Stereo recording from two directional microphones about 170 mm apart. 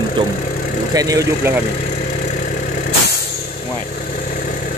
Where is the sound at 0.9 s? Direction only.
20° right (ahead or behind).